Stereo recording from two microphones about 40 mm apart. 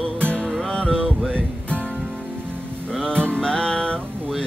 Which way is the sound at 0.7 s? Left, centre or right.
Centre.